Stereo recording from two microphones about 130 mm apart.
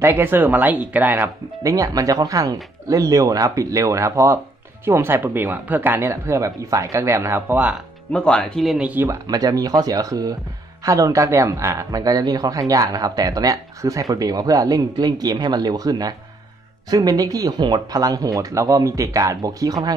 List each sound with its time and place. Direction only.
0.0 s speech: 15° right (ahead or behind)
8.1 s speech: 5° left (ahead or behind); by 9.1 s 10° right (ahead or behind)
9.1 s speech: 30° right (ahead or behind)